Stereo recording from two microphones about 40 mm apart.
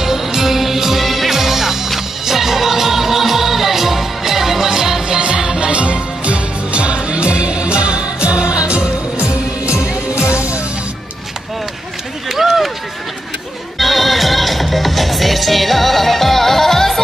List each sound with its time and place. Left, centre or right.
0.0 s music: centre
5.7 s music: right
12.3 s run: centre
13.7 s music: centre